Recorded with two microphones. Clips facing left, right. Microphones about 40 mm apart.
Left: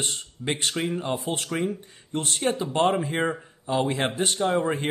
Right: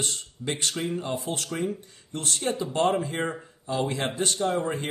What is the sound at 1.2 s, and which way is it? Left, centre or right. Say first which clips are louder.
Speech: left 2 dB; left.